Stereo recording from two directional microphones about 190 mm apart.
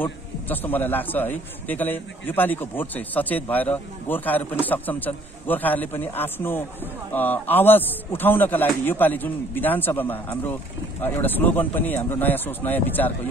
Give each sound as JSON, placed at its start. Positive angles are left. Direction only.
{"t": 0.0, "sound": "a man's voice", "side_deg": 10}